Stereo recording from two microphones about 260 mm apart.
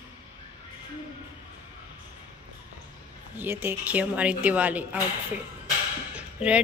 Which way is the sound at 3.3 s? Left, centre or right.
Centre.